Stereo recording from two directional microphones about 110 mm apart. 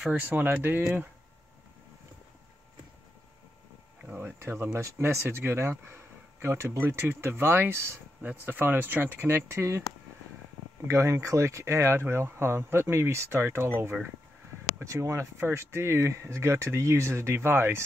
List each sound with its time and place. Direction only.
0.1 s speech: 15° right (ahead or behind)
4.0 s speech: 15° right (ahead or behind)
10.9 s speech: 25° right (ahead or behind)
14.8 s speech: 25° right (ahead or behind)